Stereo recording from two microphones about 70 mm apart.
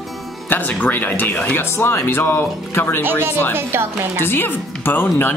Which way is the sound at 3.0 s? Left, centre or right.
Right.